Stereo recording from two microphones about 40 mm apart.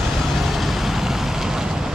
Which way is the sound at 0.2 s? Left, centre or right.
Centre.